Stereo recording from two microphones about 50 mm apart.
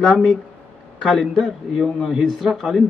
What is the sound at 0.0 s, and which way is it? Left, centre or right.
Speech, centre.